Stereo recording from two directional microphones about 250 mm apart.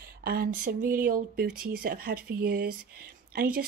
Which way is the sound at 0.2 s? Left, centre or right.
Right.